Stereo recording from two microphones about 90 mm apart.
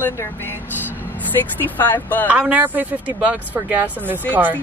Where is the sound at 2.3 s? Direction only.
15° right (ahead or behind).